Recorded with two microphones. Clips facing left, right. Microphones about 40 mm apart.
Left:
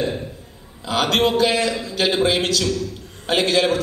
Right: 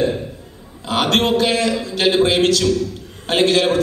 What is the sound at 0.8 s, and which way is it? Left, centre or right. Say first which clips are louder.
Mantra: right 2 dB; right.